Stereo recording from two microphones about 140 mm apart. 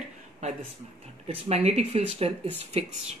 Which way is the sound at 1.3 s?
50° right (ahead or behind).